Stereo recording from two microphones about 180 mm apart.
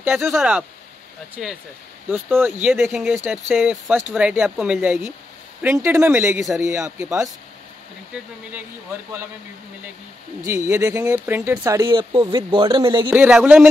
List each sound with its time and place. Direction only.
0.1 s speech: centre (ahead or behind); by 7.2 s 15° right (ahead or behind)
10.4 s speech: 15° right (ahead or behind)
13.1 s speech: 10° right (ahead or behind)